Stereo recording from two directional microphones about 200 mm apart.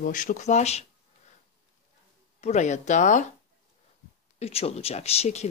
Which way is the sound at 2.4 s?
35° left (ahead or behind).